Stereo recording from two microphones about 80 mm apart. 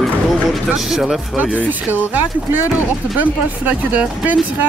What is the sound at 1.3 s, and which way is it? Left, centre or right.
Speech, centre.